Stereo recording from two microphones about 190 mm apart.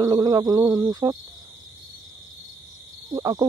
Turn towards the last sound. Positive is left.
turn(degrees=-20)  # may be behind; listen again after turning